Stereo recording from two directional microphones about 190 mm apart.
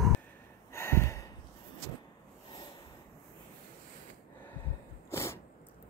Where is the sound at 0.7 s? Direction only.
15° left (ahead or behind).